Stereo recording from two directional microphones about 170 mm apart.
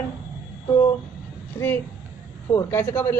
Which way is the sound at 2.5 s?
15° left (ahead or behind).